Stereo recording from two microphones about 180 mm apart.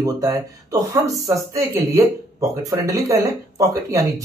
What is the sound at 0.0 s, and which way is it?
Speech, 20° right (ahead or behind).